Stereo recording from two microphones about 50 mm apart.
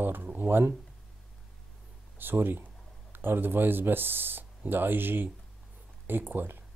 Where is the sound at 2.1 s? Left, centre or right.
Right.